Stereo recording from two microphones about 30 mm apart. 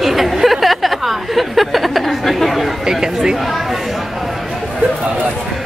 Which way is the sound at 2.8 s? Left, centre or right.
Centre.